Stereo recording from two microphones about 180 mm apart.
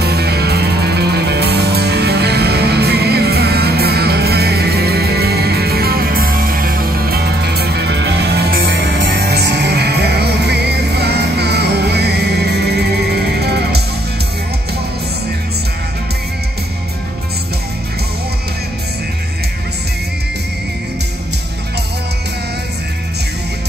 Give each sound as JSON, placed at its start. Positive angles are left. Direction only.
{"t": 0.0, "sound": "music", "side_deg": -65}